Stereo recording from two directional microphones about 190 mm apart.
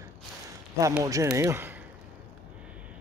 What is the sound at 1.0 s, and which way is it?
Speech, 15° right (ahead or behind).